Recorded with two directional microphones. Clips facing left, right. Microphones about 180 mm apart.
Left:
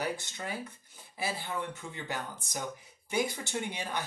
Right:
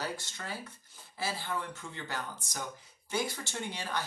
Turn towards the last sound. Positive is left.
turn(degrees=20)  # may be behind; listen again after turning